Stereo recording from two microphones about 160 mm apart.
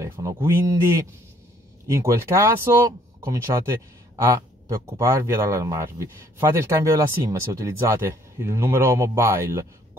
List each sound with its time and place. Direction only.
0.1 s speech: 30° right (ahead or behind)